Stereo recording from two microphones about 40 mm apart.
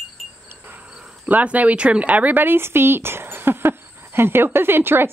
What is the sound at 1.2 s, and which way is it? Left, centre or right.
Speech, right.